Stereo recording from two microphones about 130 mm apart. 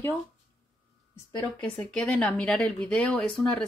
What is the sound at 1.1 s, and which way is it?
A woman's voice, 15° left (ahead or behind).